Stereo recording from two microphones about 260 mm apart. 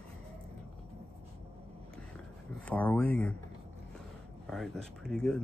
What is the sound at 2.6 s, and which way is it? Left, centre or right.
Speech, centre.